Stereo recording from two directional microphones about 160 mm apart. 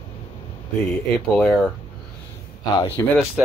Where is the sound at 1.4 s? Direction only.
10° left (ahead or behind).